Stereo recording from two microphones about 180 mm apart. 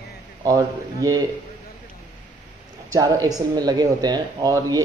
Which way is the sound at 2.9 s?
20° right (ahead or behind).